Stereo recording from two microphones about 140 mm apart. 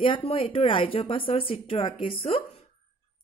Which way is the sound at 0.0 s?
40° left (ahead or behind).